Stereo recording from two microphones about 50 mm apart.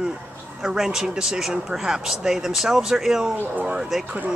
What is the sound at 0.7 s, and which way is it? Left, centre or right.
Speech, centre.